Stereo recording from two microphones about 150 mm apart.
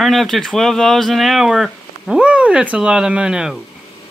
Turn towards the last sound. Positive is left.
turn(degrees=-5)  # may be behind; listen again after turning